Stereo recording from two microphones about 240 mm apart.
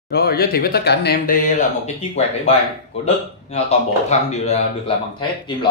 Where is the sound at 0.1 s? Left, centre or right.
Left.